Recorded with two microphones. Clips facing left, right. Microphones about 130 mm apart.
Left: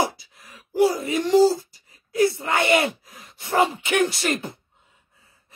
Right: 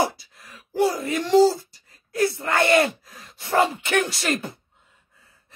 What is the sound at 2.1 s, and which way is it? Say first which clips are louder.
Speech: left 2 dB; 20° left (ahead or behind).